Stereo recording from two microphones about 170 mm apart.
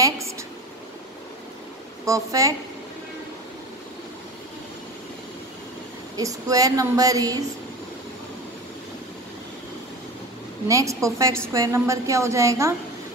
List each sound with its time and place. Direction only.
2.0 s a woman's voice: 20° right (ahead or behind)
6.1 s a woman's voice: 20° right (ahead or behind)
10.7 s a woman's voice: 20° right (ahead or behind)